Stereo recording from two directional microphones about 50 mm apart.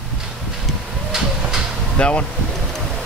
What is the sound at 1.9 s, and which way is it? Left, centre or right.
Speech, left.